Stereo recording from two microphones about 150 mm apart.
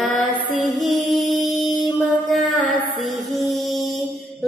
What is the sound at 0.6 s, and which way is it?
Music, centre (ahead or behind).